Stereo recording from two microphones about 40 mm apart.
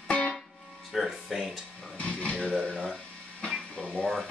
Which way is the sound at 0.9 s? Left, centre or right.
Centre.